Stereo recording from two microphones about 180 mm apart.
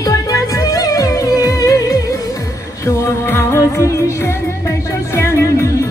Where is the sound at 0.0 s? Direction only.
20° left (ahead or behind).